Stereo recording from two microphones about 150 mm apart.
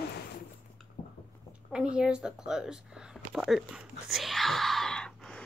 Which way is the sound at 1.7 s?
5° right (ahead or behind).